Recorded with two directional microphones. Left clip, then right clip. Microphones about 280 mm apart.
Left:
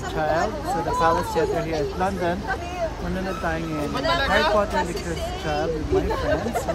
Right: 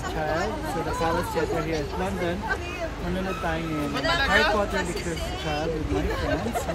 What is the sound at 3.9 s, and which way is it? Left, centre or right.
Speech, left.